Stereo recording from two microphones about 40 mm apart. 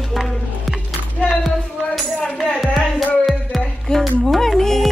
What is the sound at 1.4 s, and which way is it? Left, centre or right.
Music, centre.